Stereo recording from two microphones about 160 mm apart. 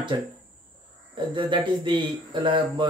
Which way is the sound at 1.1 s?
30° right (ahead or behind).